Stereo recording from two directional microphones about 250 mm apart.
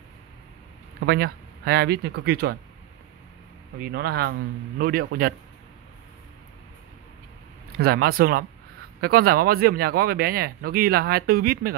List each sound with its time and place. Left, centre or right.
1.0 s speech: right
3.8 s speech: right
7.8 s speech: right